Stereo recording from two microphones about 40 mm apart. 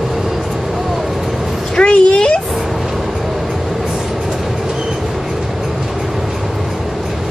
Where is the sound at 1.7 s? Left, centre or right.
Left.